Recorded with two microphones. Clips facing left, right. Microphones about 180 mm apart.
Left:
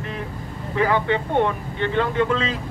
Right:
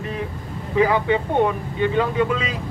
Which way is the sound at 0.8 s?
10° right (ahead or behind).